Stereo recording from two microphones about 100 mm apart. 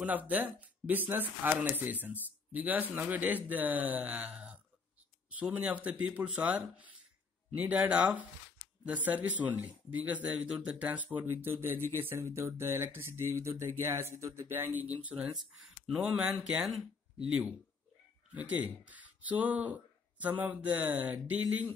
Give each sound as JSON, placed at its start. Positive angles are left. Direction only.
{"t": 0.0, "sound": "speech", "side_deg": -15}
{"t": 15.3, "sound": "speech", "side_deg": -5}